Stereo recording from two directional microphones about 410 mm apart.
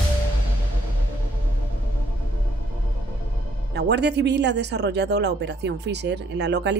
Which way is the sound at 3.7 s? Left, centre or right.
Right.